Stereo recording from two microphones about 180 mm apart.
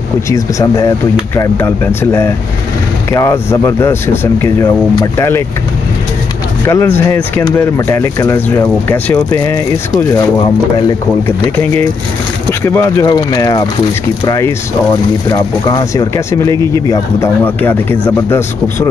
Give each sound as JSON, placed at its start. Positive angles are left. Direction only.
{"t": 0.3, "sound": "speech", "side_deg": 15}
{"t": 6.6, "sound": "speech", "side_deg": 15}
{"t": 11.2, "sound": "speech", "side_deg": 10}